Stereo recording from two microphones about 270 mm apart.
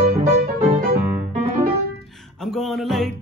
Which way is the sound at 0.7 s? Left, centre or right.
Right.